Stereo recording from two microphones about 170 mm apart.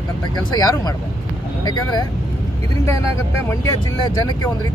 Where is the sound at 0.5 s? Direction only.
20° left (ahead or behind).